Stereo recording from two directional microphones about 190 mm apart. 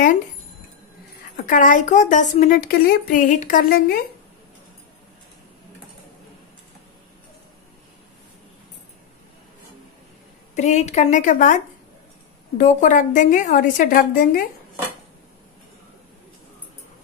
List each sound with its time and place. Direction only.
1.3 s a woman's voice: 45° left (ahead or behind)
10.5 s a woman's voice: 35° left (ahead or behind)